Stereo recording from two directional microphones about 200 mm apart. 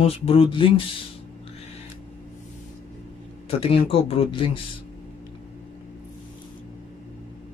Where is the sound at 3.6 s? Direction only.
30° left (ahead or behind).